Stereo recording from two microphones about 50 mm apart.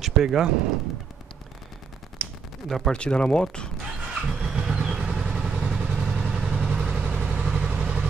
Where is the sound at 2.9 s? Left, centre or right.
Centre.